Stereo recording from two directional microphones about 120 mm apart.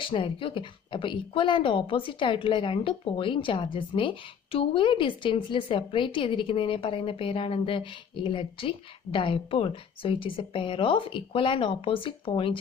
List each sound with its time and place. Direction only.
0.0 s speech: 45° left (ahead or behind)